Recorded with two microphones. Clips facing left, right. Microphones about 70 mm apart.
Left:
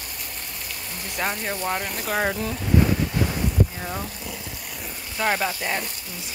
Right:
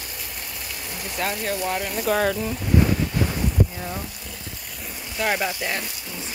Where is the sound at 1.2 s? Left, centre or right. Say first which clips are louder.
Right 1 dB; centre.